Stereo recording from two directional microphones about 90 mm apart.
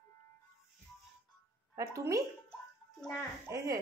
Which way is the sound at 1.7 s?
35° right (ahead or behind).